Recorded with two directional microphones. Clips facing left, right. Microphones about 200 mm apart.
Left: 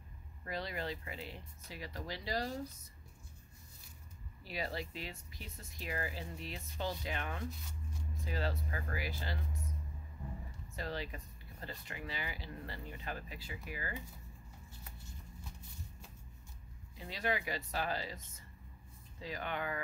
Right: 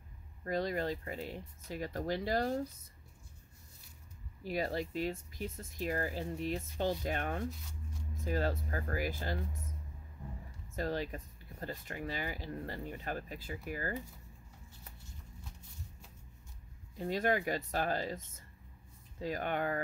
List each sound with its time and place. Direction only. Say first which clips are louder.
0.4 s speech: right 7 dB; 45° right (ahead or behind)
4.4 s speech: right 6 dB; 45° right (ahead or behind)
10.8 s speech: right 6 dB; 45° right (ahead or behind)
16.9 s speech: right 6 dB; 50° right (ahead or behind)